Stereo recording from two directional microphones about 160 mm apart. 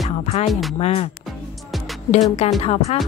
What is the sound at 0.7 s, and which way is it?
Speech, 40° left (ahead or behind).